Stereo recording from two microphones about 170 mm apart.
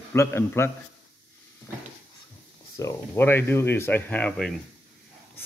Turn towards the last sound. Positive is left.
turn(degrees=5)  # may be behind; listen again after turning